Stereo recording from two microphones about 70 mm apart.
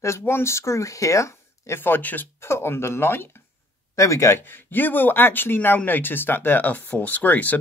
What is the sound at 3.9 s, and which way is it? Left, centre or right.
Speech, left.